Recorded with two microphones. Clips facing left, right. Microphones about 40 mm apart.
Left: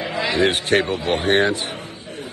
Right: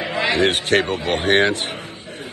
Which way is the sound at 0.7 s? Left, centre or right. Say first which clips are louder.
Right 1 dB; centre.